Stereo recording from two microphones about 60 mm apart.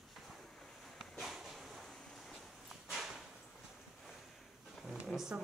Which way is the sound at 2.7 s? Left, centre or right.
Centre.